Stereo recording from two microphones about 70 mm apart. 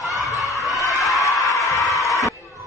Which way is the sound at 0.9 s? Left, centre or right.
Centre.